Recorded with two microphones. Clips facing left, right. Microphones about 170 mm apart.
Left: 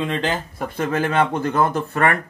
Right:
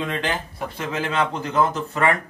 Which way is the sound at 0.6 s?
50° left (ahead or behind).